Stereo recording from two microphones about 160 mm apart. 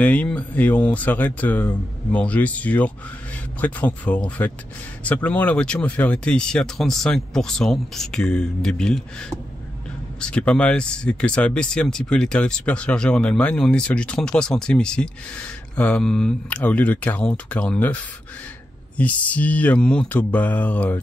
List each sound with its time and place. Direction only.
0.0 s speech: 10° left (ahead or behind)
10.3 s speech: 5° left (ahead or behind)
18.9 s speech: 10° left (ahead or behind)